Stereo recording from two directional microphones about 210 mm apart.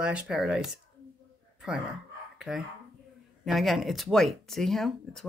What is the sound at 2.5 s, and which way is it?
Speech, centre (ahead or behind).